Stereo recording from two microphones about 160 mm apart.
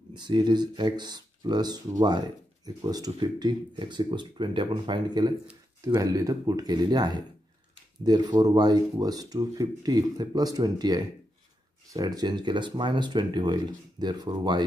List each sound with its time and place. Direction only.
0.1 s speech: 30° right (ahead or behind)